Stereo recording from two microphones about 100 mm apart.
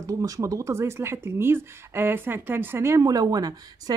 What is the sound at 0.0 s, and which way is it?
Speech, 35° right (ahead or behind).